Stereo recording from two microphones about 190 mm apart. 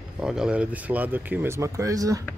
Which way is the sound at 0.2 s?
5° right (ahead or behind).